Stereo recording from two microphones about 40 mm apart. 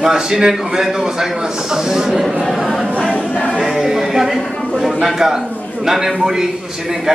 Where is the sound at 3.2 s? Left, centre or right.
Left.